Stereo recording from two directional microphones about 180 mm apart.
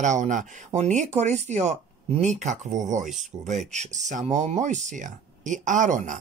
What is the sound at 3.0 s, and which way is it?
Speech, centre (ahead or behind).